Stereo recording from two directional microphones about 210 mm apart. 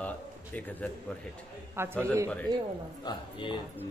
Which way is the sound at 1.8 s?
10° right (ahead or behind).